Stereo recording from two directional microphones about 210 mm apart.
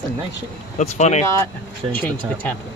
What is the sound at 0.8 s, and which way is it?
Speech, 35° left (ahead or behind).